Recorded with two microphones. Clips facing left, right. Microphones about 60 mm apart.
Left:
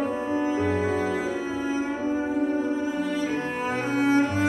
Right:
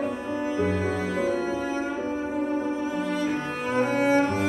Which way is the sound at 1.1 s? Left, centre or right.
Right.